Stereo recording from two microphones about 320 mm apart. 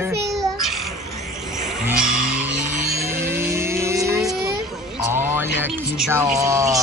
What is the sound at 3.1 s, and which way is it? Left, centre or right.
Music, centre.